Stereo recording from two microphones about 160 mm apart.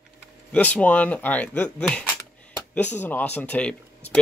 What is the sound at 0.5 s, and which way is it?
Speech, 10° left (ahead or behind).